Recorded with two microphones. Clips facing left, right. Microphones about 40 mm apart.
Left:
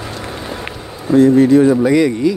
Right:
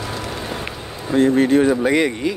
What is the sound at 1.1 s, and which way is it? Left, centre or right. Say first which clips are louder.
Speech: left 6 dB; right.